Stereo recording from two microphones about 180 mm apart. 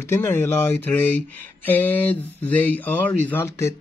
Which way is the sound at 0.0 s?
15° left (ahead or behind).